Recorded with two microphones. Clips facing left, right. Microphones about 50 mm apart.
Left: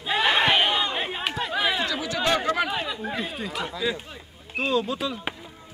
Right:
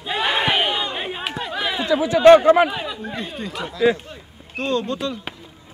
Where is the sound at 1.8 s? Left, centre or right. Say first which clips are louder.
Right 9 dB; centre.